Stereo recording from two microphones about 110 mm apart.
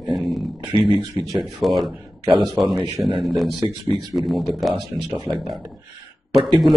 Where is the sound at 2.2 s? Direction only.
45° right (ahead or behind).